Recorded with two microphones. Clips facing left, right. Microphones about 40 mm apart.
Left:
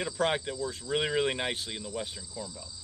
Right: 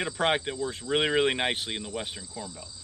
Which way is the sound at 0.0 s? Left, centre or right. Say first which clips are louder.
Right 3 dB; right.